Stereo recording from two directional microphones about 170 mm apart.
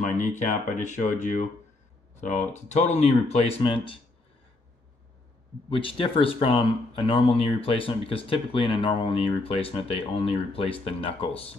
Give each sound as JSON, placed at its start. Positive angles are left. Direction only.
{"t": 0.0, "sound": "speech", "side_deg": 45}
{"t": 5.7, "sound": "speech", "side_deg": 30}